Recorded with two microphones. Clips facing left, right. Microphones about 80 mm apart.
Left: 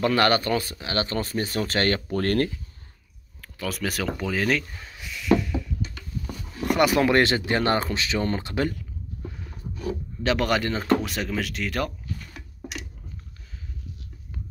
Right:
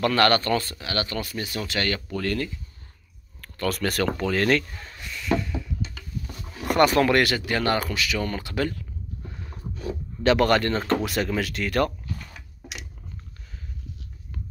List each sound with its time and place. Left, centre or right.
0.0 s speech: centre; by 2.5 s left
3.3 s speech: centre
6.6 s a sound: centre
7.1 s speech: left
8.7 s speech: centre